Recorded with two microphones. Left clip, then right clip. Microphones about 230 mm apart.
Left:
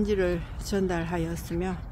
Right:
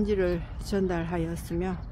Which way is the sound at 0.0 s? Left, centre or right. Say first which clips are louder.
Even; centre.